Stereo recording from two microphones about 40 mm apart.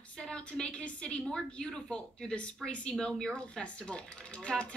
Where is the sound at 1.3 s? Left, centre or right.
Centre.